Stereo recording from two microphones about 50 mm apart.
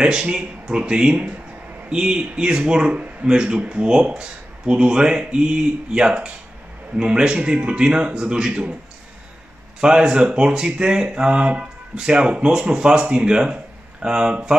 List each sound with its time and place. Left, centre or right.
0.0 s speech: centre
9.8 s speech: centre